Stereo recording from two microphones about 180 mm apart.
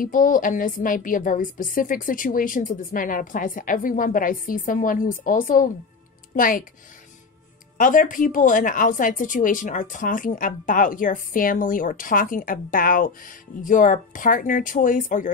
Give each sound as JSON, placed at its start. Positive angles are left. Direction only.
{"t": 0.0, "sound": "speech", "side_deg": 50}
{"t": 7.7, "sound": "speech", "side_deg": 50}